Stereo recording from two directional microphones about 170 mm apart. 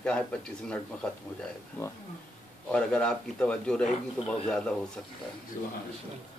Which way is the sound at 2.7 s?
5° left (ahead or behind).